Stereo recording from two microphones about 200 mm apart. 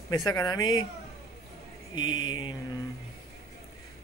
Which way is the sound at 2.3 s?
20° left (ahead or behind).